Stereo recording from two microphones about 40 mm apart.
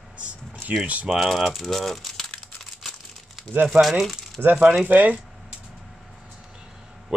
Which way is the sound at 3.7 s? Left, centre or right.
Centre.